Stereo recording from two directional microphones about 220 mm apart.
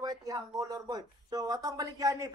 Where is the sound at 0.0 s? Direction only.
15° right (ahead or behind).